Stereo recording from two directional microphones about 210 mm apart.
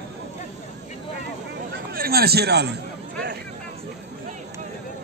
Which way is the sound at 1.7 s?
45° right (ahead or behind).